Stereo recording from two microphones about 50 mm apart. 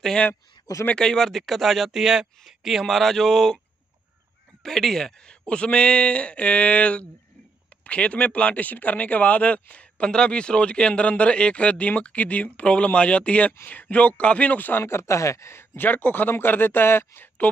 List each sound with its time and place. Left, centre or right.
0.9 s speech: centre
4.6 s speech: centre
5.5 s speech: left
14.6 s speech: left
14.9 s speech: left
15.8 s a man's voice: left